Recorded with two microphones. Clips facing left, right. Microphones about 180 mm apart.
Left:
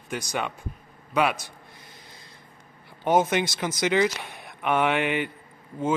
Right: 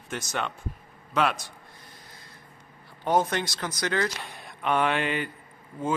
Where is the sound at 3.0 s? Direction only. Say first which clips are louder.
Left 3 dB; 20° left (ahead or behind).